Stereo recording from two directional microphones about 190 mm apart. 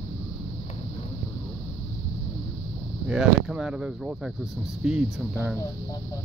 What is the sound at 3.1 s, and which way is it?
Speech, 5° right (ahead or behind).